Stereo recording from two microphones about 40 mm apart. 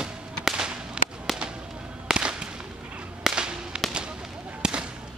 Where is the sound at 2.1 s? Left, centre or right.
Right.